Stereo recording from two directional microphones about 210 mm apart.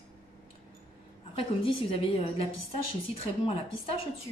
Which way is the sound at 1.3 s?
25° left (ahead or behind).